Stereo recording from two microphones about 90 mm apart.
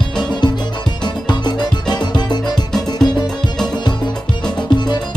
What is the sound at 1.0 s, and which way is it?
Music, 55° left (ahead or behind).